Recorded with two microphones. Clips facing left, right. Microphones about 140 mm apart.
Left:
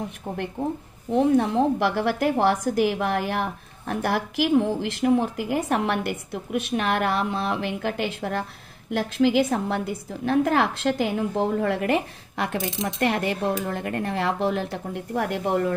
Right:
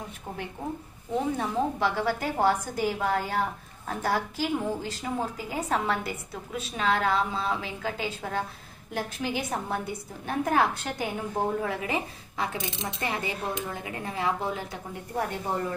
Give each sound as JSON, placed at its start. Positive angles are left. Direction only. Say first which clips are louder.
{"t": 1.1, "sound": "a woman's voice", "louder": "left 8 dB", "side_deg": 70}
{"t": 8.9, "sound": "a woman's voice", "louder": "left 10 dB", "side_deg": 85}